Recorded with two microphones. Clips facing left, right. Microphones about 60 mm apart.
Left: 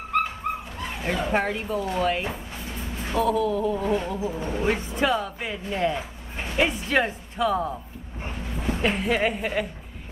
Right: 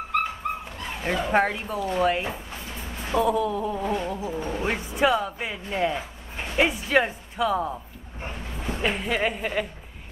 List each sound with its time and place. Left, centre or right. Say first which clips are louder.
0.4 s dog: left 1 dB; centre
1.0 s speech: right 2 dB; centre
3.2 s a sound: even; centre
3.9 s insect: left 2 dB; centre
4.6 s speech: right 1 dB; centre